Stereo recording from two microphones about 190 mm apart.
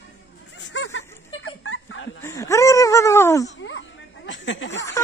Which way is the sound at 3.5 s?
75° left (ahead or behind).